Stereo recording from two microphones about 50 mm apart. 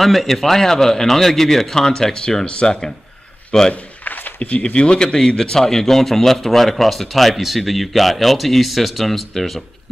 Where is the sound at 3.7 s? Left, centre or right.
Left.